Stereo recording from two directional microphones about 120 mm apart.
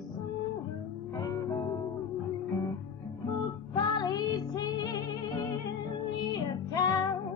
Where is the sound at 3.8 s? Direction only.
35° left (ahead or behind).